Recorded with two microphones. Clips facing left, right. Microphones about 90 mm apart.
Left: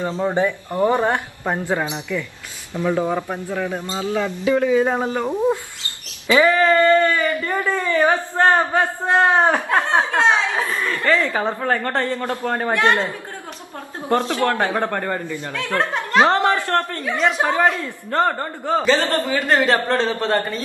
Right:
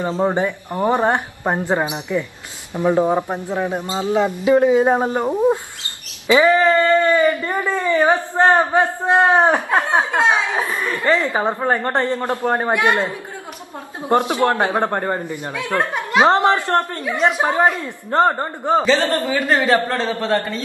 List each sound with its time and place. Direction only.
0.0 s a man's voice: 20° right (ahead or behind)
9.8 s speech: 5° right (ahead or behind)
10.5 s a man's voice: 15° right (ahead or behind)
15.5 s speech: 15° right (ahead or behind)
16.3 s a man's voice: 20° right (ahead or behind)